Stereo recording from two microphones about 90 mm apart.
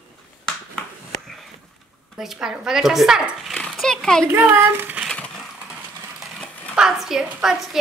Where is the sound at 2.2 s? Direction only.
5° right (ahead or behind).